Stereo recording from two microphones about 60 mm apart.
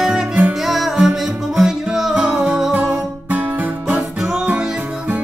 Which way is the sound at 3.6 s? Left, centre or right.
Right.